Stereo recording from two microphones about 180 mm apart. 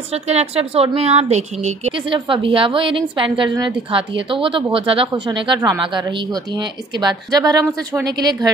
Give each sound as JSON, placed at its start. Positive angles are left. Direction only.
{"t": 0.1, "sound": "speech", "side_deg": -35}